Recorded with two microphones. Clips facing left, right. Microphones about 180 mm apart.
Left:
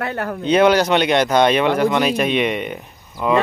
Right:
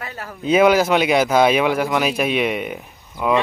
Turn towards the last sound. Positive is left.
turn(degrees=0)  # may be behind; listen again after turning